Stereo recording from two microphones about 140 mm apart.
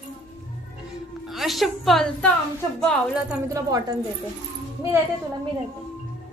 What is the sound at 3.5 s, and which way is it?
Speech, 25° right (ahead or behind).